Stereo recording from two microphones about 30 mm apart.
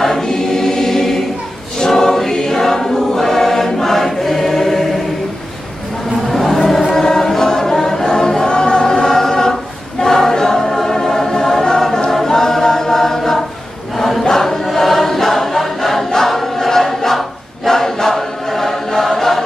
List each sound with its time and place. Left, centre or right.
0.2 s choir: centre
6.0 s a sound: centre
7.0 s choir: centre